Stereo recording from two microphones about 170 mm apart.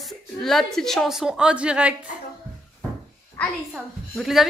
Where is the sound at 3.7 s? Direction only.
Centre (ahead or behind).